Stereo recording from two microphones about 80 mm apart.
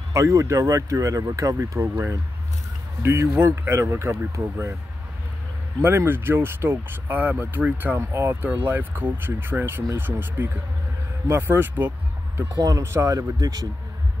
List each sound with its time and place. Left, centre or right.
0.1 s speech: right
5.8 s speech: right
12.5 s speech: right
12.8 s speech: right
13.4 s speech: right